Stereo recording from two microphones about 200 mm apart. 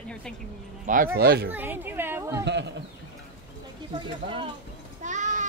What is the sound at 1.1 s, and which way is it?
Speech, 55° right (ahead or behind).